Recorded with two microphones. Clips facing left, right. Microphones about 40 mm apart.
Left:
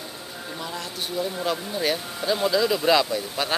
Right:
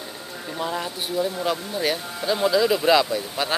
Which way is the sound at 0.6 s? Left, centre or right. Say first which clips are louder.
Right 7 dB; centre.